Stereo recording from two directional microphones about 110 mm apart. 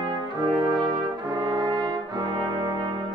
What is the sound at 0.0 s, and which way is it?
Brass instrument, 40° right (ahead or behind).